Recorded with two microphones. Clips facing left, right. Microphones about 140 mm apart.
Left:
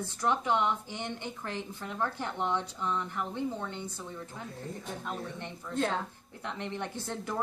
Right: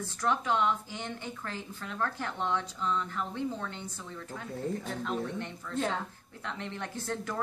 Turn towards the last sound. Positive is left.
turn(degrees=15)  # may be behind; listen again after turning